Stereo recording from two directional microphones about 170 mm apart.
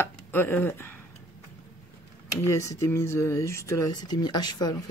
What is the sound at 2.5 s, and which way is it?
Speech, 20° left (ahead or behind).